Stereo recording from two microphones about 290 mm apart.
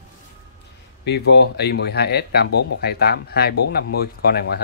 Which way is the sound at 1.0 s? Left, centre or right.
Left.